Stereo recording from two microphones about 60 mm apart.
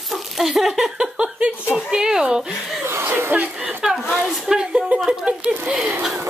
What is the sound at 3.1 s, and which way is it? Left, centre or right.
Speech, right.